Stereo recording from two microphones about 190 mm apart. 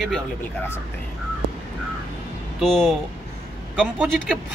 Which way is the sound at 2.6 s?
Centre (ahead or behind).